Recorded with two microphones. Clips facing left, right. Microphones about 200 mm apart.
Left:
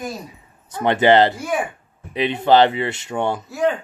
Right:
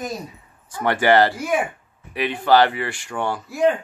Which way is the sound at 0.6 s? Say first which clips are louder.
Left 3 dB; 20° left (ahead or behind).